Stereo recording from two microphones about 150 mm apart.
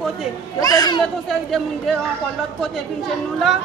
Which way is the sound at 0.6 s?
25° left (ahead or behind).